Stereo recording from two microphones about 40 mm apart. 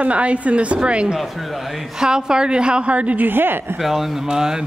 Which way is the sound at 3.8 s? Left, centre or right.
Centre.